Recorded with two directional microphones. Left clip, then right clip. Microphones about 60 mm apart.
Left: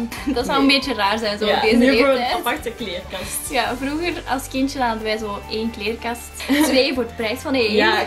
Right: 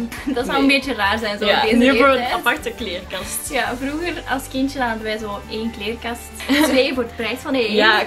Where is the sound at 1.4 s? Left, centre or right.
Right.